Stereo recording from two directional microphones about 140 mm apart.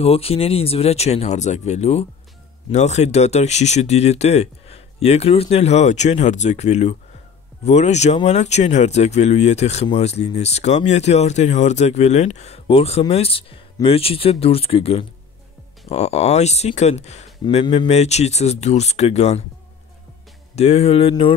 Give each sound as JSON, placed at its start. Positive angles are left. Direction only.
{"t": 0.0, "sound": "speech", "side_deg": 45}
{"t": 20.5, "sound": "speech", "side_deg": 50}